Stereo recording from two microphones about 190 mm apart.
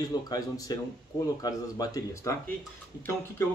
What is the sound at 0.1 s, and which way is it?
Speech, 20° left (ahead or behind).